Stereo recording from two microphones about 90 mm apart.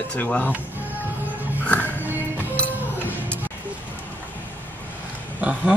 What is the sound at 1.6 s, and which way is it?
Music, 20° left (ahead or behind).